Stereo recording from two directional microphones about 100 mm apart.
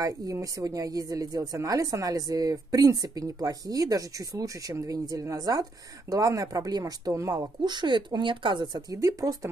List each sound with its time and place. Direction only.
0.0 s a woman's voice: 35° right (ahead or behind)